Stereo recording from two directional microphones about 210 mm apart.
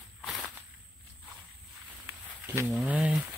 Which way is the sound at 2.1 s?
10° right (ahead or behind).